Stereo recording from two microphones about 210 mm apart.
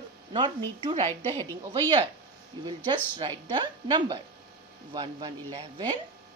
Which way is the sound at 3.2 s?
20° right (ahead or behind).